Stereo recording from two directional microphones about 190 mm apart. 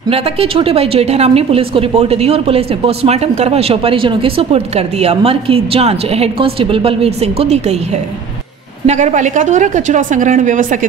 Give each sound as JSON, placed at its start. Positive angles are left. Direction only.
{"t": 0.1, "sound": "a woman's voice", "side_deg": -30}
{"t": 8.8, "sound": "a woman's voice", "side_deg": -40}